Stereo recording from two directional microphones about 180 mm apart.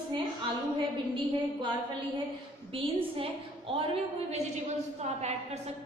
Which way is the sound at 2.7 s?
30° right (ahead or behind).